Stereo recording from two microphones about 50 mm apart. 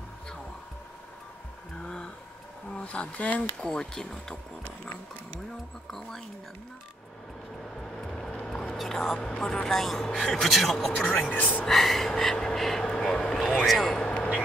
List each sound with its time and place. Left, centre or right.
2.7 s speech: left
3.6 s speech: centre
5.9 s speech: centre
7.8 s vehicle: centre
8.7 s speech: centre
11.0 s speech: left
11.6 s speech: centre
13.7 s speech: centre
13.9 s a sound: centre